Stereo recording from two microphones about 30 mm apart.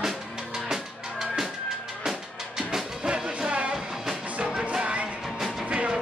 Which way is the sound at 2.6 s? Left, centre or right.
Centre.